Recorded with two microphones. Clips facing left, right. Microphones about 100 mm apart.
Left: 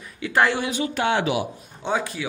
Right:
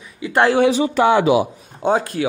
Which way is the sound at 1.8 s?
45° right (ahead or behind).